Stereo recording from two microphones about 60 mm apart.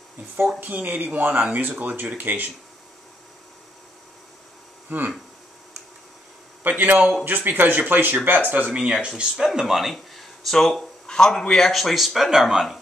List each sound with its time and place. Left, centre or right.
0.6 s speech: right
4.8 s speech: right
6.6 s speech: right
8.7 s speech: centre